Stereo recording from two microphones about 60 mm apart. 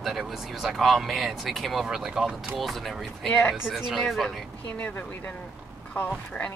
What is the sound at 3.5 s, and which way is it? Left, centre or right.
Speech, centre.